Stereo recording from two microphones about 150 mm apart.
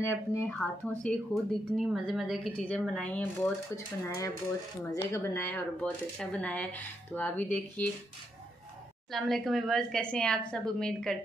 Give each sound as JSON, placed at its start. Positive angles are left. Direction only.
{"t": 0.0, "sound": "speech", "side_deg": 20}
{"t": 0.5, "sound": "speech", "side_deg": 5}
{"t": 3.7, "sound": "speech", "side_deg": 20}
{"t": 9.1, "sound": "speech", "side_deg": 0}